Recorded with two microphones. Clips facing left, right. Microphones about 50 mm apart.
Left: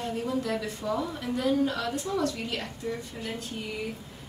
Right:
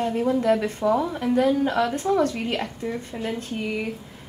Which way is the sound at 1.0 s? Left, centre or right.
Right.